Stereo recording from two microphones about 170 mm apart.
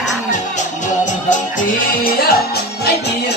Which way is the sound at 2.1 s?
65° left (ahead or behind).